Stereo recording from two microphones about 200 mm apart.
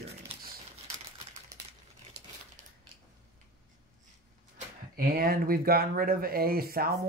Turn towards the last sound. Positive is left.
turn(degrees=-50)  # may be behind; listen again after turning